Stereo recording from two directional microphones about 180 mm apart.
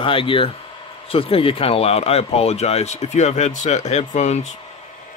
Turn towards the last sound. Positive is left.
turn(degrees=40)  # may be behind; listen again after turning